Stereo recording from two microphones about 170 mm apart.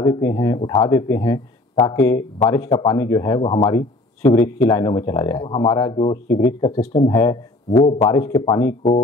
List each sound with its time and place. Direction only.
0.0 s speech: 20° left (ahead or behind)